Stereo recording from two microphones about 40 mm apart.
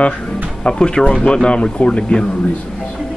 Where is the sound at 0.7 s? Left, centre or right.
Centre.